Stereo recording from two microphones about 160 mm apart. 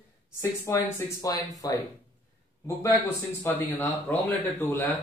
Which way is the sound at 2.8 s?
15° left (ahead or behind).